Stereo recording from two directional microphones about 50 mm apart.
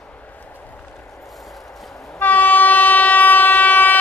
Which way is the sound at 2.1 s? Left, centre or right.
Left.